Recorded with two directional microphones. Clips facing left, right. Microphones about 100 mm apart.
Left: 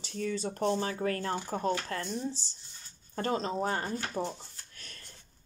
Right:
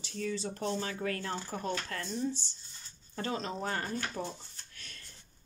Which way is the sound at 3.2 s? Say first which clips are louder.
Left 4 dB; 40° left (ahead or behind).